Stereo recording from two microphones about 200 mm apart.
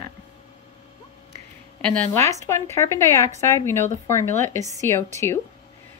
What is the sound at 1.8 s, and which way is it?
A woman's voice, 5° left (ahead or behind).